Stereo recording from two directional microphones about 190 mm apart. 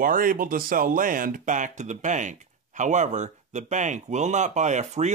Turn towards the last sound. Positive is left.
turn(degrees=-40)  # may be behind; listen again after turning